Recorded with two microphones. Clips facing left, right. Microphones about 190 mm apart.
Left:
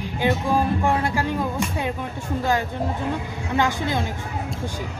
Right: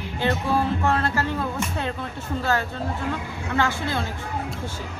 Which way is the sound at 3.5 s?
15° left (ahead or behind).